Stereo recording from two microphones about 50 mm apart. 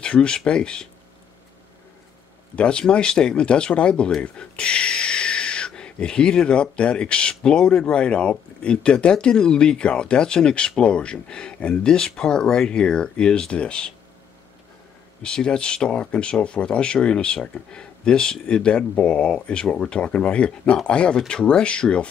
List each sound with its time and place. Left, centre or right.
0.0 s speech: centre
2.5 s speech: left
15.2 s speech: centre